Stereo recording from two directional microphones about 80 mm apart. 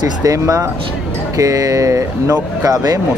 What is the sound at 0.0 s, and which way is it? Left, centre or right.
Speech, right.